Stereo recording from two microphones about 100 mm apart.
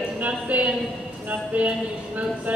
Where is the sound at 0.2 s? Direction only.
15° right (ahead or behind).